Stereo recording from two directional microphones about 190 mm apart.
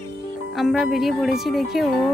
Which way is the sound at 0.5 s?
Centre (ahead or behind).